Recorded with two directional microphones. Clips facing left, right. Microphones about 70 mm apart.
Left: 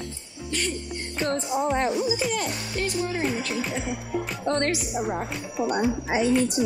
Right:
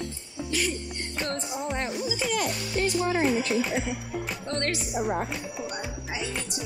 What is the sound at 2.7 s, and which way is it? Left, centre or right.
Music, right.